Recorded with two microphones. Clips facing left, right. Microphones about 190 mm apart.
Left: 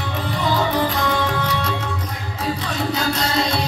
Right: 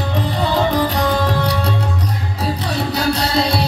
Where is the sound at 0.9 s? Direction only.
35° right (ahead or behind).